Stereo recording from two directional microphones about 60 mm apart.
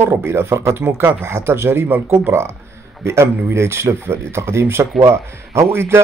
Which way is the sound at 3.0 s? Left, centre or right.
Right.